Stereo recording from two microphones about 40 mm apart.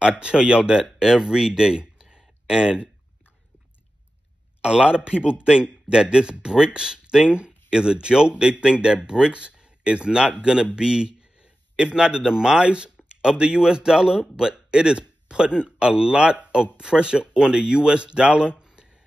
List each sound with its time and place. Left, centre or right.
0.0 s a man's voice: right
4.6 s a man's voice: right